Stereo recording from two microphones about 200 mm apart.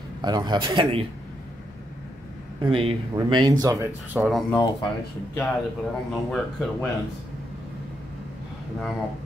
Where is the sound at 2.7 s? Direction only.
25° right (ahead or behind); by 4.6 s centre (ahead or behind).